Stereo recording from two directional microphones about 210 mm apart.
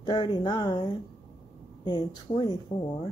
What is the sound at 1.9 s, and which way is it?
Speech, 20° left (ahead or behind).